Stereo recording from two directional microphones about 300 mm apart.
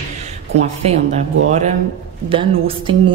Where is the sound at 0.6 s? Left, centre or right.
Right.